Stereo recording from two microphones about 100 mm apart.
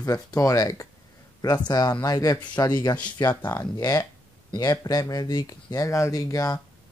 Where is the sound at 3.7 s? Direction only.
40° left (ahead or behind).